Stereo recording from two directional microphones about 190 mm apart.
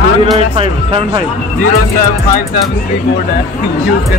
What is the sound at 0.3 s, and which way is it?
Speech, 25° right (ahead or behind).